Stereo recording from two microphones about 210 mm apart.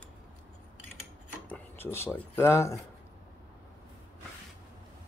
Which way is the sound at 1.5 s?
10° left (ahead or behind).